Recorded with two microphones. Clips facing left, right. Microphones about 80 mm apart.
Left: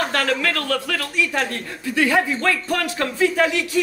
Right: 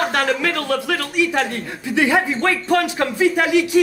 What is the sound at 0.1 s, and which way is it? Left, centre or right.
Speech, centre.